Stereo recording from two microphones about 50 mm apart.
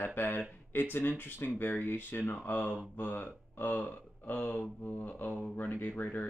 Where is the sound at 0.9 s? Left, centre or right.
Left.